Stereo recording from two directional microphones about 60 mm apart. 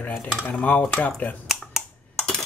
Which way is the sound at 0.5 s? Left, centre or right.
Left.